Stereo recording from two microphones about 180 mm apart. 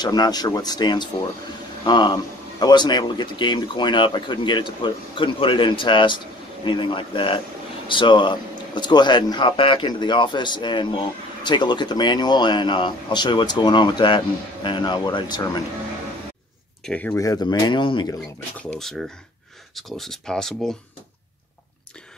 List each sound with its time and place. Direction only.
0.0 s speech: 20° left (ahead or behind)
16.8 s speech: 5° left (ahead or behind); by 18.1 s 25° left (ahead or behind)
18.6 s speech: 5° left (ahead or behind)